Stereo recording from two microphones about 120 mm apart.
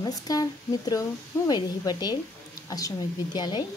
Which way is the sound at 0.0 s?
35° left (ahead or behind).